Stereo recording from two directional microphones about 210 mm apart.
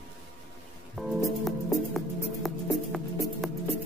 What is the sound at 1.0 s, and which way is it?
Music, centre (ahead or behind).